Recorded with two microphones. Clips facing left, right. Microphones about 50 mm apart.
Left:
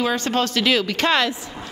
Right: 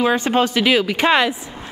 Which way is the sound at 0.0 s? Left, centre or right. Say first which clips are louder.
Right 4 dB; centre.